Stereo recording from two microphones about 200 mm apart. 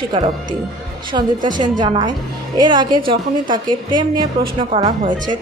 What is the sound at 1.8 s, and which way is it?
A woman's voice, 25° right (ahead or behind).